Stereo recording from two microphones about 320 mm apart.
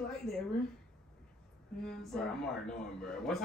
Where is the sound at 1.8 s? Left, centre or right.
Centre.